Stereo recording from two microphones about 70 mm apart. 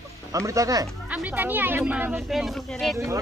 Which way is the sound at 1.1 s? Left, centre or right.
Right.